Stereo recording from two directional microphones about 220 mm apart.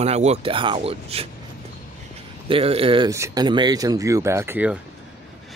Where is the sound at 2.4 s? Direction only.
25° right (ahead or behind); by 4.8 s 10° right (ahead or behind).